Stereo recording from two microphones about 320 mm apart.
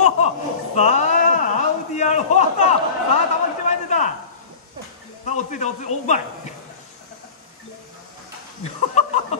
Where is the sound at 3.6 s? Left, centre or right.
Left.